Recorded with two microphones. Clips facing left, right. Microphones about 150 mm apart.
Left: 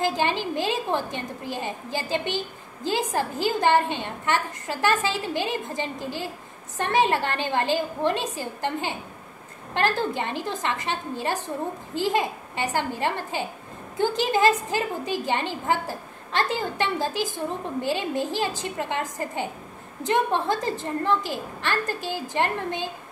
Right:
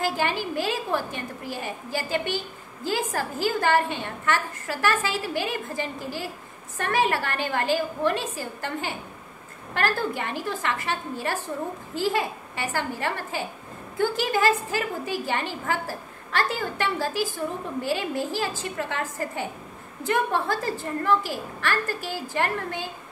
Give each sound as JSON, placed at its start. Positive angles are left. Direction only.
{"t": 0.0, "sound": "a woman's voice", "side_deg": 20}